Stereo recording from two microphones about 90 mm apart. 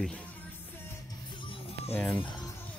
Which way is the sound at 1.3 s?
70° left (ahead or behind).